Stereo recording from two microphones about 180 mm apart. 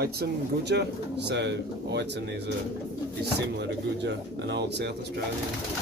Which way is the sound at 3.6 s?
75° right (ahead or behind).